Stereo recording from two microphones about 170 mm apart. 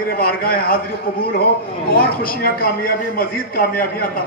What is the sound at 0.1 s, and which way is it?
Speech, 60° left (ahead or behind).